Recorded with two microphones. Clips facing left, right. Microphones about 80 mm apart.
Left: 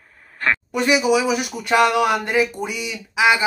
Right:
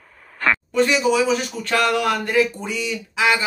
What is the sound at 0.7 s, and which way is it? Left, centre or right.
Speech, centre.